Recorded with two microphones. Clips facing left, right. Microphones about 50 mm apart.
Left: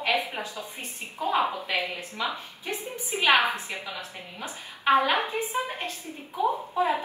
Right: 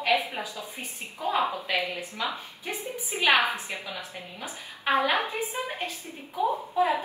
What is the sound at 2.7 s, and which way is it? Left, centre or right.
Speech, left.